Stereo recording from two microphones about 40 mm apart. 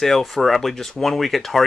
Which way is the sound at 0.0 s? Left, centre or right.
Centre.